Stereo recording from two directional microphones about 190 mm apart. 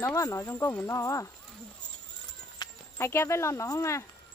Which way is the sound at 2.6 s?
15° left (ahead or behind).